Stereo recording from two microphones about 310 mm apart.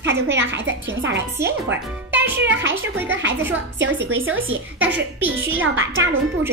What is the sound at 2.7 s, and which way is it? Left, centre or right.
Speech, centre.